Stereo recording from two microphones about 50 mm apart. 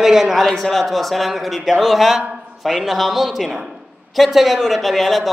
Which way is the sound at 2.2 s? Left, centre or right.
Right.